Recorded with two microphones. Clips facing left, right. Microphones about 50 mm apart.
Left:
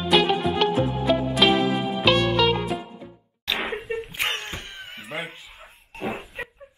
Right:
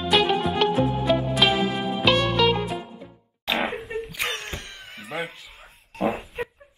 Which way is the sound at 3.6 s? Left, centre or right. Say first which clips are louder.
Even; centre.